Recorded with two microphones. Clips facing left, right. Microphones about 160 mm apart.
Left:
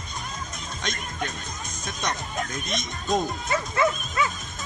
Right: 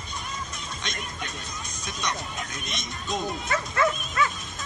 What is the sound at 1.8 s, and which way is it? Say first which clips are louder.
Speech: left 2 dB; 50° left (ahead or behind).